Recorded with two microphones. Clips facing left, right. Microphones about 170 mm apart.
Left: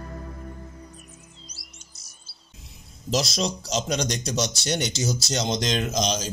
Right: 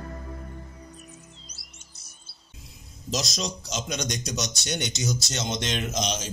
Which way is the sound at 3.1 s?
30° left (ahead or behind).